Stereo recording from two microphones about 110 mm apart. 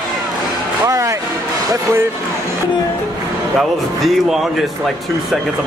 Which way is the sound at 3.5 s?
Centre (ahead or behind).